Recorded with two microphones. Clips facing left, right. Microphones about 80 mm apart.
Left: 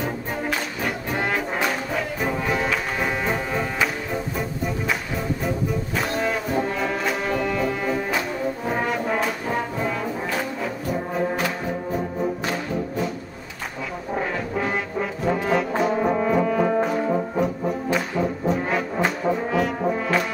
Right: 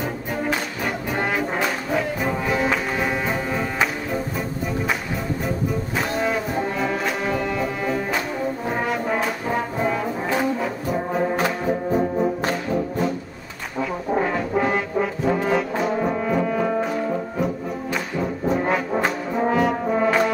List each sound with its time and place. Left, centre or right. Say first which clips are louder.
0.0 s brass instrument: right 1 dB; centre
5.4 s brass instrument: even; centre
14.1 s brass instrument: right 4 dB; centre